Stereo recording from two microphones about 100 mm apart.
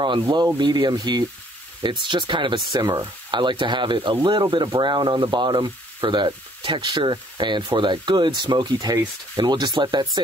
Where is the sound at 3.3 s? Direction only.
50° right (ahead or behind).